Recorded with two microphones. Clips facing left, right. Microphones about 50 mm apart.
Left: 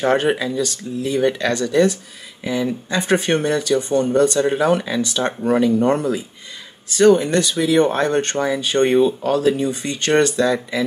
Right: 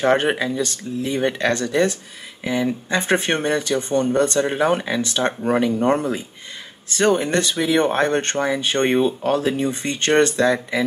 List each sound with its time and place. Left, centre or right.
0.3 s speech: right